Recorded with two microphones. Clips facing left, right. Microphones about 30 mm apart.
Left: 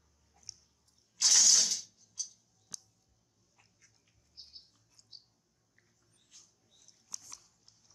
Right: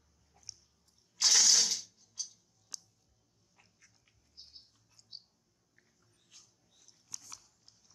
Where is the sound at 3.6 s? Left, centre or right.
Centre.